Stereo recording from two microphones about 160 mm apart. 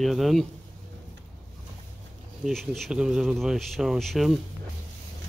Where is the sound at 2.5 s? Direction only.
Centre (ahead or behind).